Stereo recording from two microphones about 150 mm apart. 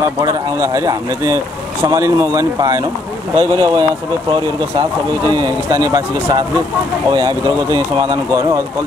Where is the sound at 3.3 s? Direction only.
30° right (ahead or behind).